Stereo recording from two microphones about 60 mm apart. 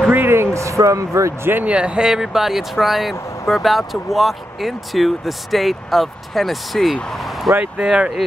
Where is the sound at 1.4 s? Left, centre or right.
Right.